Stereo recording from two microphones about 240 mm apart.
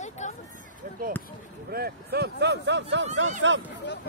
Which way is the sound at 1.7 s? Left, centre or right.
Right.